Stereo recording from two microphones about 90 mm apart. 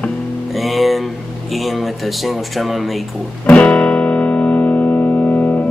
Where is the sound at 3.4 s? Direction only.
15° left (ahead or behind).